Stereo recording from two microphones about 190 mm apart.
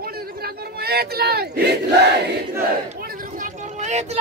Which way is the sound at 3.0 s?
50° right (ahead or behind).